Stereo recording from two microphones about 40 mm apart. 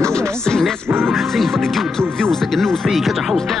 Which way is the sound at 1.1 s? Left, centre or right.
Centre.